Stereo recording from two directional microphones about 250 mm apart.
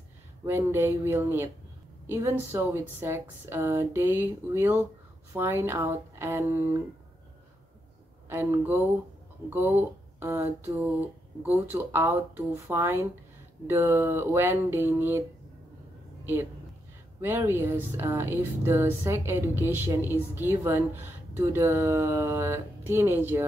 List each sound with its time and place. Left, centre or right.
0.5 s speech: centre
8.3 s speech: centre
17.2 s speech: centre